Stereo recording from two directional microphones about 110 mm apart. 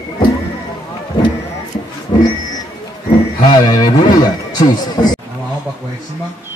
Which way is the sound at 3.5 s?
40° left (ahead or behind).